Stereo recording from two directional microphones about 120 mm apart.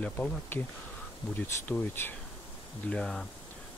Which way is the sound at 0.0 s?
15° left (ahead or behind).